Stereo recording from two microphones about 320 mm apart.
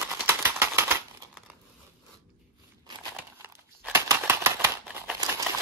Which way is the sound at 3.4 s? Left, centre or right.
Centre.